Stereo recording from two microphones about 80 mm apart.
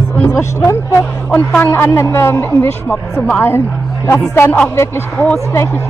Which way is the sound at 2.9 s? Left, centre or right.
Centre.